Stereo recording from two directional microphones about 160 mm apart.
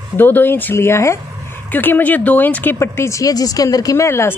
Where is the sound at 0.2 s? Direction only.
10° left (ahead or behind).